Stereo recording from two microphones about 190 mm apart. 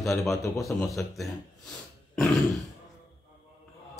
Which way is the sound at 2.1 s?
5° left (ahead or behind).